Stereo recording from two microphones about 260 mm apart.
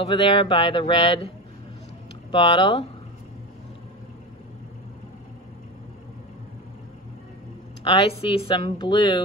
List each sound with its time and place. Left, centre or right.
0.1 s speech: centre
2.3 s speech: left
7.8 s speech: left